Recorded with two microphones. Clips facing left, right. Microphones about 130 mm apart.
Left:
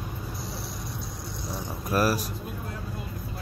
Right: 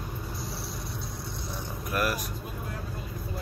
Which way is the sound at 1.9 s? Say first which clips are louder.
Left 5 dB; 35° left (ahead or behind).